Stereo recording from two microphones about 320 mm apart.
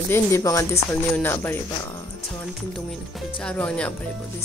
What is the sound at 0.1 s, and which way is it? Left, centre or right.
Speech, centre.